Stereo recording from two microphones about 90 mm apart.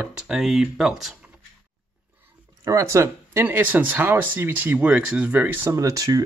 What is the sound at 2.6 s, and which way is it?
Speech, 35° right (ahead or behind).